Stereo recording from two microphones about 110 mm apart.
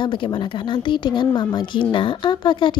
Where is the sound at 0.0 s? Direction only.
50° left (ahead or behind).